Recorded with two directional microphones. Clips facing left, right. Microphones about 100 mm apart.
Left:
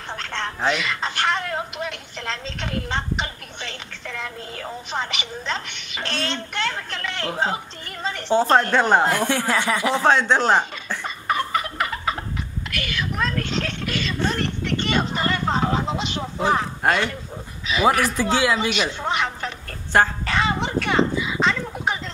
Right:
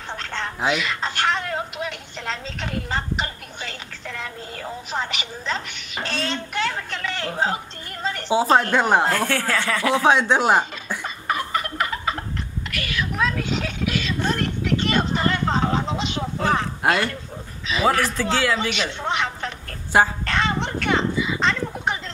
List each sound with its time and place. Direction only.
0.2 s speech: centre (ahead or behind)
9.0 s speech: 15° left (ahead or behind)
10.0 s speech: 10° right (ahead or behind)
11.2 s fowl: centre (ahead or behind)
12.7 s a sound: centre (ahead or behind)
17.8 s speech: 10° left (ahead or behind); by 20.1 s 10° right (ahead or behind)
20.2 s a sound: 5° left (ahead or behind)